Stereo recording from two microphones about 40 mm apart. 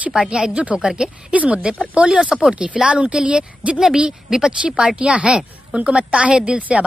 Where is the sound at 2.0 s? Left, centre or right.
Right.